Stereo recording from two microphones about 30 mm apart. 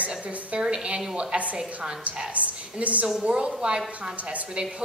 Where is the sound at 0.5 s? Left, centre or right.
Right.